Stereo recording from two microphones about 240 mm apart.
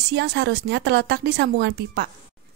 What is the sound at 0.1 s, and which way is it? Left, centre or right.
Speech, right.